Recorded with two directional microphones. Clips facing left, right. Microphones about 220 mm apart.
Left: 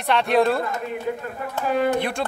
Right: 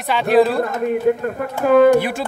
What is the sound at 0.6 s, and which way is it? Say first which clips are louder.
Speech: right 8 dB; 55° right (ahead or behind).